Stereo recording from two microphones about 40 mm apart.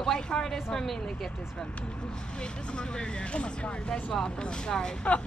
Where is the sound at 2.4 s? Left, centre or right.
Left.